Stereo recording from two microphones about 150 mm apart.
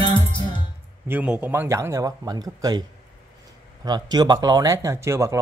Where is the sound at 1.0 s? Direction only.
10° right (ahead or behind); by 2.8 s 25° right (ahead or behind).